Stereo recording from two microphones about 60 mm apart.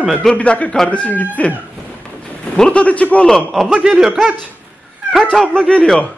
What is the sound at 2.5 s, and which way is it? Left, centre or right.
Speech, centre.